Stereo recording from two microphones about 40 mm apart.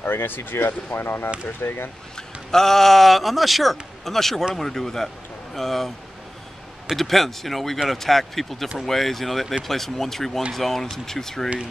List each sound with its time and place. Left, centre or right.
0.0 s speech: left
2.1 s speech: centre
7.0 s speech: centre